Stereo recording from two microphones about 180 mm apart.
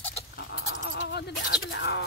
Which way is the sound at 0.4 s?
75° left (ahead or behind).